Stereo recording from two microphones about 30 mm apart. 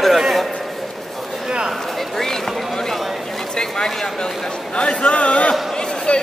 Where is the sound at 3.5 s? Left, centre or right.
Left.